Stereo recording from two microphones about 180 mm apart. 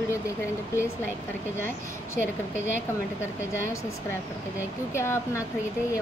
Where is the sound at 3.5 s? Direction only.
15° left (ahead or behind).